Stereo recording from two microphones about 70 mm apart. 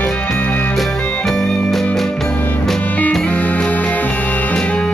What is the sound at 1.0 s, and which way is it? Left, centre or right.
Music, centre.